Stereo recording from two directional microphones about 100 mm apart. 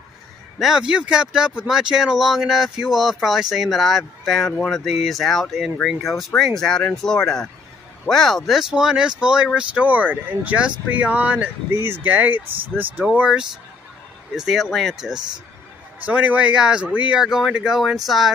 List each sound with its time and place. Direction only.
0.6 s speech: 5° right (ahead or behind)